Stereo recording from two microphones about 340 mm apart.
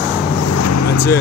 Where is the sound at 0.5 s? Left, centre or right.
Left.